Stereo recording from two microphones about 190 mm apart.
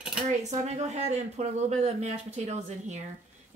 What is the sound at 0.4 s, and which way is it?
Speech, 35° right (ahead or behind).